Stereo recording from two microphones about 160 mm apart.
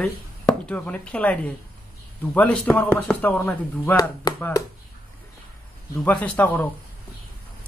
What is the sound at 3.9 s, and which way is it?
Speech, 25° left (ahead or behind).